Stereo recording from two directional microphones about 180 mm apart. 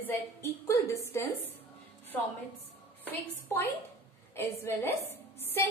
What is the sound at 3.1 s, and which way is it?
Speech, 10° left (ahead or behind).